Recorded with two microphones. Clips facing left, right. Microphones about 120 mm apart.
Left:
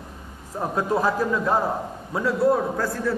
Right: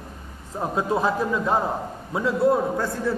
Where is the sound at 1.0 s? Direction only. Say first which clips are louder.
Left 1 dB; 15° right (ahead or behind).